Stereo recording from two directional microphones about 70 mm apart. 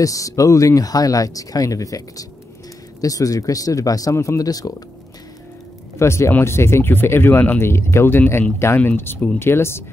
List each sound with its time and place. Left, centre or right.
0.0 s speech: left
5.9 s speech: left